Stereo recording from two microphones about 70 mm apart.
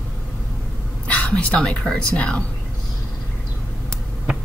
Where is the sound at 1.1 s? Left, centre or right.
Centre.